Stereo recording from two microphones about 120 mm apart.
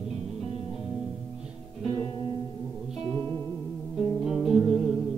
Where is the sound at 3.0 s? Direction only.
5° left (ahead or behind).